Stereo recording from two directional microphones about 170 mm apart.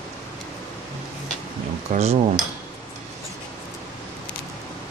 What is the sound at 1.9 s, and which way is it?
Speech, 50° right (ahead or behind).